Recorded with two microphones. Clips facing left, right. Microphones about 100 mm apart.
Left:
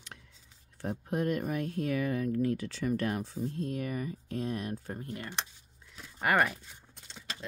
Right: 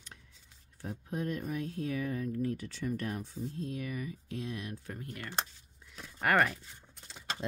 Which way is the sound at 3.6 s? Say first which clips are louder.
Left 3 dB; 50° left (ahead or behind).